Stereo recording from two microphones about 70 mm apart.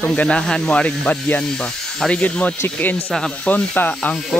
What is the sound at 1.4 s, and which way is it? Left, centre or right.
Speech, centre.